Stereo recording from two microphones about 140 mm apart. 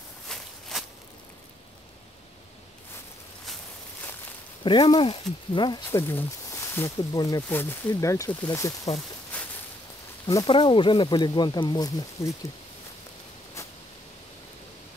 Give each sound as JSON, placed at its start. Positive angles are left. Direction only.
{"t": 0.3, "sound": "walk", "side_deg": 0}
{"t": 4.6, "sound": "speech", "side_deg": 30}
{"t": 5.9, "sound": "speech", "side_deg": 15}
{"t": 7.4, "sound": "speech", "side_deg": 15}
{"t": 10.2, "sound": "speech", "side_deg": 35}